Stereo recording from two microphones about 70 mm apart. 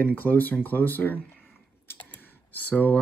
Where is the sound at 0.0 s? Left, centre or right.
Left.